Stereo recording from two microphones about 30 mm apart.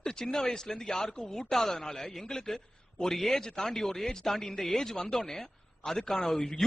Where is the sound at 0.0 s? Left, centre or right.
Left.